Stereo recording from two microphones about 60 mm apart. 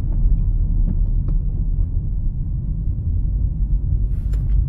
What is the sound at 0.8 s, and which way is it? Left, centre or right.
Heart sounds, left.